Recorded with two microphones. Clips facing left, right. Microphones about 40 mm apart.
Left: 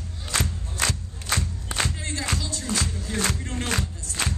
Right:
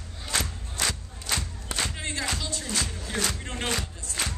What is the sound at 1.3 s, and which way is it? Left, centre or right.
Crowd, centre.